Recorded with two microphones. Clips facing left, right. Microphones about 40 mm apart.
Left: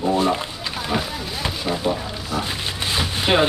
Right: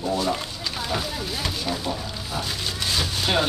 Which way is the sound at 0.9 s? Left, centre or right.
Centre.